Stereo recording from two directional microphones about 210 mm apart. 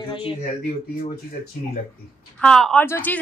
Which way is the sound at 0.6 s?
40° left (ahead or behind).